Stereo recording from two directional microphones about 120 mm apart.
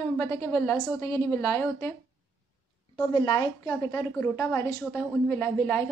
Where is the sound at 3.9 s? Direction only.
20° left (ahead or behind).